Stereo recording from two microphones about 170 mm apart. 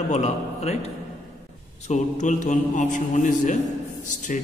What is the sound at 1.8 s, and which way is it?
A man's voice, 45° left (ahead or behind).